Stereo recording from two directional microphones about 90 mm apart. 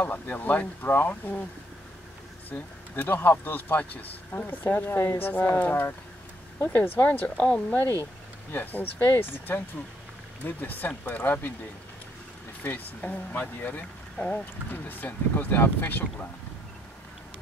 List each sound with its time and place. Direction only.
0.0 s speech: 20° left (ahead or behind)
2.5 s speech: 20° left (ahead or behind)
12.6 s speech: 20° left (ahead or behind)